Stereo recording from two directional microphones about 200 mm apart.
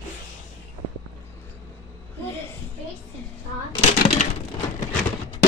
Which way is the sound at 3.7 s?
30° left (ahead or behind).